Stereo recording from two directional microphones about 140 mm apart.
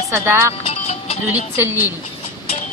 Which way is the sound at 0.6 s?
45° left (ahead or behind).